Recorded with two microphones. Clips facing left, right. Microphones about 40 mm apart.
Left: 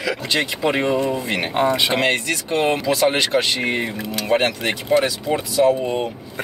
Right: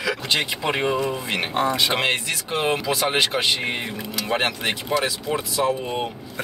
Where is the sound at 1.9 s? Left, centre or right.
Centre.